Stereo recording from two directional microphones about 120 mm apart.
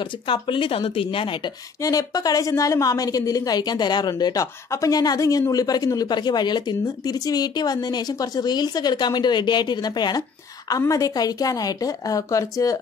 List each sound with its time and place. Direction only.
0.0 s speech: 45° left (ahead or behind)
1.8 s a woman's voice: 30° left (ahead or behind)